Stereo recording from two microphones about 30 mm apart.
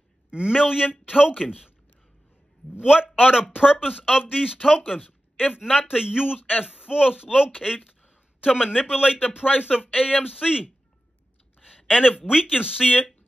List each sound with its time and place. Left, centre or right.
0.3 s a man's voice: right
2.8 s a man's voice: right
4.6 s speech: centre
5.9 s a man's voice: right
8.4 s a man's voice: right
9.4 s speech: left
9.8 s speech: left
10.3 s a man's voice: right